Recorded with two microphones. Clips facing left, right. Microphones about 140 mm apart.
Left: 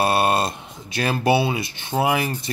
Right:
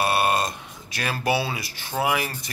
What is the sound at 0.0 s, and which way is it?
Speech, 30° left (ahead or behind).